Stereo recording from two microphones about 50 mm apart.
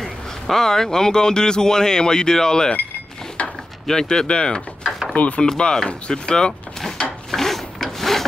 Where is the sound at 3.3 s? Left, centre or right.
Centre.